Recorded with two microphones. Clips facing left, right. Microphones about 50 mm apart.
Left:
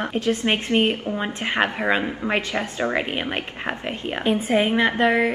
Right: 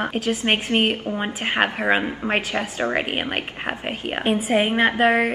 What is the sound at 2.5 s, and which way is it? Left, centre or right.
Speech, right.